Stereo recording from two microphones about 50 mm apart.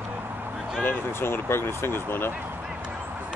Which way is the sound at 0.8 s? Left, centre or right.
Left.